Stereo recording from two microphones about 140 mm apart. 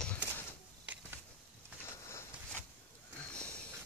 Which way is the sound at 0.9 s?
10° right (ahead or behind).